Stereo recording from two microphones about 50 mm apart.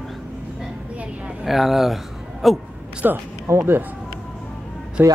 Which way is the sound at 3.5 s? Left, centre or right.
Right.